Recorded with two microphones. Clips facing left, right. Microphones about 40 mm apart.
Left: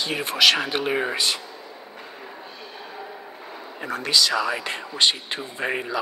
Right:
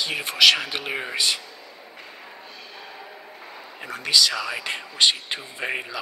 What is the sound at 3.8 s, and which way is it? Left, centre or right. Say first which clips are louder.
Speech: even; centre.